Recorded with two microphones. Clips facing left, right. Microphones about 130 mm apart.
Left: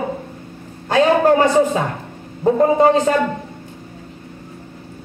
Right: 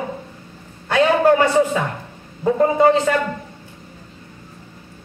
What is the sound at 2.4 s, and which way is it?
Speech, 30° left (ahead or behind).